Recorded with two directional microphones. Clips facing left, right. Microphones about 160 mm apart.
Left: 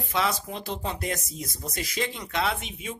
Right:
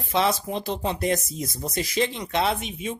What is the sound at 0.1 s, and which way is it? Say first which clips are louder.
Speech: right 5 dB; 25° right (ahead or behind).